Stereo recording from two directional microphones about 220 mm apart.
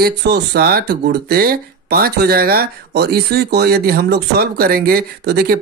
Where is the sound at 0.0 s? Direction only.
45° right (ahead or behind).